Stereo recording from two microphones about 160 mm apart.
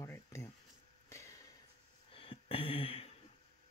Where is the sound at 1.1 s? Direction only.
20° left (ahead or behind).